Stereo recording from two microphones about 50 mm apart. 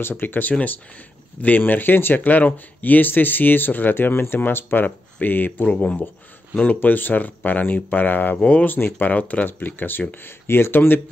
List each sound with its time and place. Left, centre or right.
0.1 s speech: left
8.4 s speech: left
8.6 s speech: left